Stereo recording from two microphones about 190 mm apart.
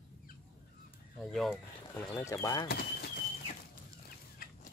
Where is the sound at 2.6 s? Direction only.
55° left (ahead or behind).